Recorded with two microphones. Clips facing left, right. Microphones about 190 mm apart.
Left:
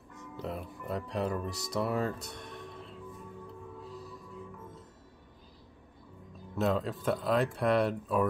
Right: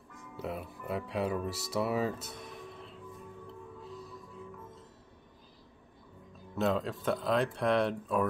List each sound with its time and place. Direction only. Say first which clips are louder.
0.4 s speech: even; 5° right (ahead or behind)
6.5 s speech: left 1 dB; centre (ahead or behind)